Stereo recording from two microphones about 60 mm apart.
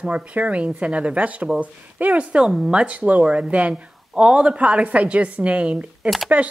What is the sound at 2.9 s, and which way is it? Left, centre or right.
A woman's voice, right.